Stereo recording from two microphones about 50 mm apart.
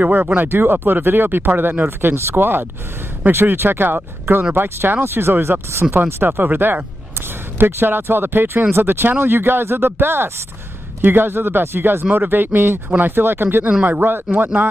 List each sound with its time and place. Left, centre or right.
0.0 s speech: right
0.4 s speech: right
5.7 s speech: right
6.0 s speech: right